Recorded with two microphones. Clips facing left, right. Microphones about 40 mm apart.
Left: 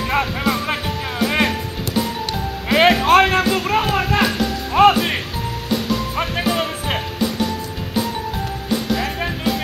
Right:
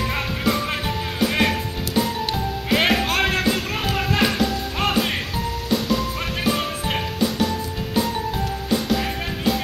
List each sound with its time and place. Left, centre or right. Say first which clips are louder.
0.1 s music: left 4 dB; centre
2.7 s music: left 7 dB; centre
4.0 s music: left 3 dB; centre
4.8 s music: left 12 dB; left
6.1 s music: left 3 dB; centre